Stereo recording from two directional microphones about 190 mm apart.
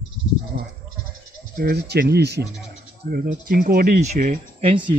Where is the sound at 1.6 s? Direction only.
55° right (ahead or behind); by 4.6 s 40° right (ahead or behind).